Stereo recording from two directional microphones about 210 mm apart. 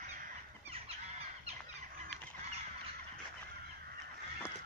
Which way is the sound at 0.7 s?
25° right (ahead or behind).